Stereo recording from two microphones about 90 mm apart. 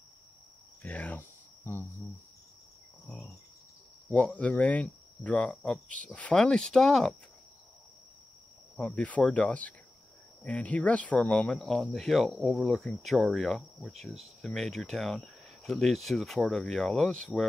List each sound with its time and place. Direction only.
0.8 s cricket: 15° left (ahead or behind)
3.1 s speech: 10° left (ahead or behind)
8.7 s speech: 15° left (ahead or behind)